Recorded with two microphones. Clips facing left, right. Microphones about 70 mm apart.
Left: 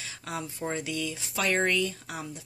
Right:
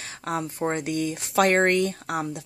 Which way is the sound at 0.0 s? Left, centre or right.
Right.